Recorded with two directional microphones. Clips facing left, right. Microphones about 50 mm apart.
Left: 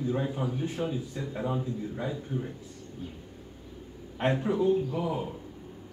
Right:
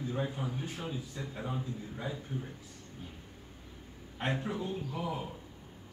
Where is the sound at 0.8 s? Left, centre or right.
Left.